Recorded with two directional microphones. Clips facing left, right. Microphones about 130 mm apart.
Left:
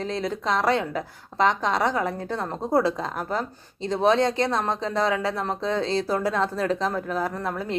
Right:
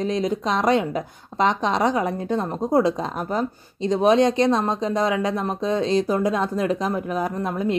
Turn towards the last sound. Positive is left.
turn(degrees=-15)  # may be behind; listen again after turning